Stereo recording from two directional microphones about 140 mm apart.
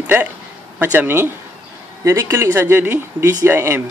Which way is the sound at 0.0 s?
10° right (ahead or behind).